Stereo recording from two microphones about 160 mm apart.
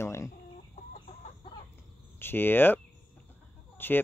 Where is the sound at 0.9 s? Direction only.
45° left (ahead or behind).